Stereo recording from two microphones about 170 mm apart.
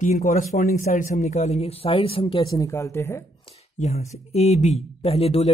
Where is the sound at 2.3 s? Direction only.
20° left (ahead or behind).